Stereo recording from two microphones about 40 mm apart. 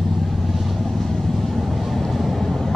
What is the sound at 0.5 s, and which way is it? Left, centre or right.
Vehicle, centre.